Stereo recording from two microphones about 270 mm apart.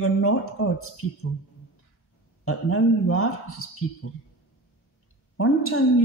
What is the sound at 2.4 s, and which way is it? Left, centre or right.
A woman's voice, left.